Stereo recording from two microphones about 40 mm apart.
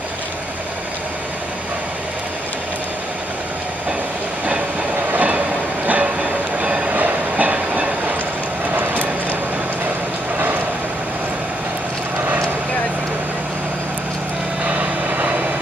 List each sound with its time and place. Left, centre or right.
5.1 s train: right
8.7 s a sound: right
14.7 s vehicle: right